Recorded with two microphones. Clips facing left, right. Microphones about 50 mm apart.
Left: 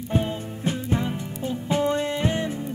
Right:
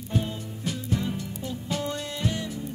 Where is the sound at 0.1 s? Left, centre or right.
Left.